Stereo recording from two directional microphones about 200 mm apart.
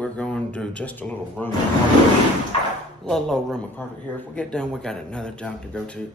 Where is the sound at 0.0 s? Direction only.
5° left (ahead or behind).